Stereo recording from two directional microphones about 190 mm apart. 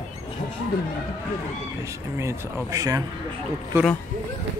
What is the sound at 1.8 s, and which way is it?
Speech, 15° right (ahead or behind).